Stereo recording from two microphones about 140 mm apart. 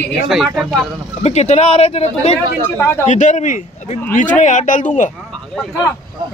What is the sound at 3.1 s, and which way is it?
Speech, 60° left (ahead or behind).